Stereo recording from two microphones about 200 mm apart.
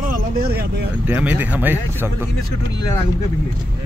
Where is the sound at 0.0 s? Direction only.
45° right (ahead or behind).